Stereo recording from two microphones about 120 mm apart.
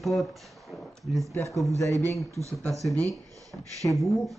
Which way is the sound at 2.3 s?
25° right (ahead or behind).